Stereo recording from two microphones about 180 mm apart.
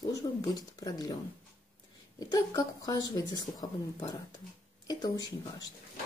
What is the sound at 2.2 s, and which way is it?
A woman's voice, 20° left (ahead or behind).